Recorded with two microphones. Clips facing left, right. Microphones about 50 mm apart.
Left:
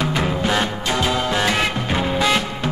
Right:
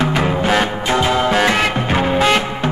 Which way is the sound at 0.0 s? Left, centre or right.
Right.